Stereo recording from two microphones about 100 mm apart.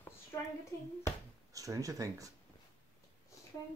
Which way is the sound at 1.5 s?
35° right (ahead or behind).